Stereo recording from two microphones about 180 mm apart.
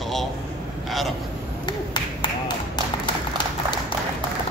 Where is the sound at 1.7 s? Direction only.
25° left (ahead or behind).